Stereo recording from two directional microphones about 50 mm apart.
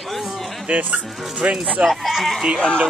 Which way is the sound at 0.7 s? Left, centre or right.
Right.